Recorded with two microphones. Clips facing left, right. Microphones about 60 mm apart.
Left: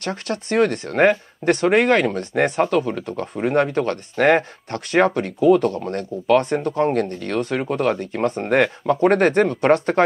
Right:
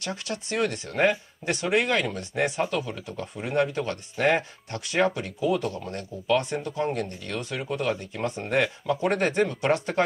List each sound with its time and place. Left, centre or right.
0.0 s speech: left